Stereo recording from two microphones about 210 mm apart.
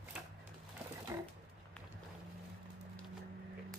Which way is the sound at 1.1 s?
15° right (ahead or behind).